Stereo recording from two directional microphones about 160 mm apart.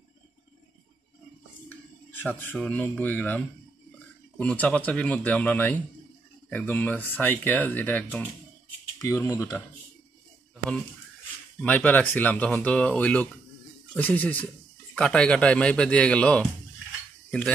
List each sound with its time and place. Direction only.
1.7 s a sound: 10° left (ahead or behind)
2.6 s speech: 10° left (ahead or behind)
11.6 s speech: 10° left (ahead or behind)